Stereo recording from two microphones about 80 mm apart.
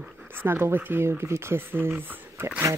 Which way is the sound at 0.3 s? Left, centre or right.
Right.